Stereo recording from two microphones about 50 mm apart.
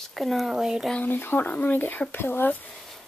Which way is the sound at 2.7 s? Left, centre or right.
Centre.